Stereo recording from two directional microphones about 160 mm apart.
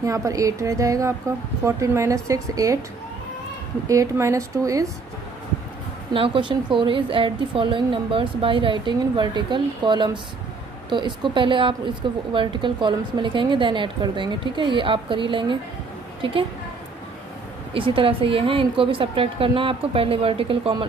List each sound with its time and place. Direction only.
0.0 s a woman's voice: 20° right (ahead or behind)
3.8 s a woman's voice: 20° right (ahead or behind)
6.1 s a woman's voice: 35° right (ahead or behind)
17.7 s a woman's voice: 35° right (ahead or behind)